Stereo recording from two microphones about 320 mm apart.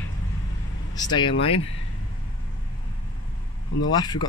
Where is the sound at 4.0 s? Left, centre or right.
Centre.